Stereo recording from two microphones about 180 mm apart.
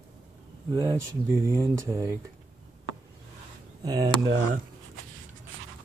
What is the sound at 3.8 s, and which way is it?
Speech, 25° right (ahead or behind).